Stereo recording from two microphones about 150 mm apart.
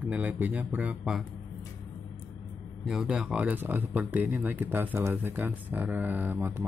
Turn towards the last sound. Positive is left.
turn(degrees=-15)  # may be behind; listen again after turning